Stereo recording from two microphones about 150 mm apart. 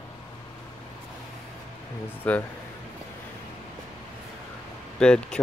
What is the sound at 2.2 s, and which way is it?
Music, 10° left (ahead or behind).